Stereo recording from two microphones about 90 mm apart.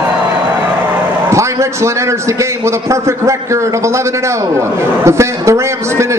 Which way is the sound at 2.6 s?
35° right (ahead or behind).